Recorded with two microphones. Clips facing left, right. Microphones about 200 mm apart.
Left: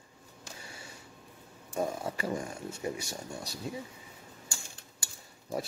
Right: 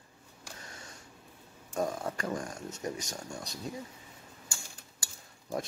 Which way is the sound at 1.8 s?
5° left (ahead or behind).